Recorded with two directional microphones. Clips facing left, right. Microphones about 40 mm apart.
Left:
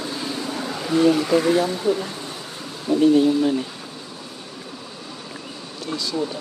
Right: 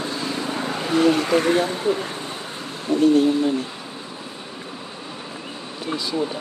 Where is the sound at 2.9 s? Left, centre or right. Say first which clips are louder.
Left 1 dB; right.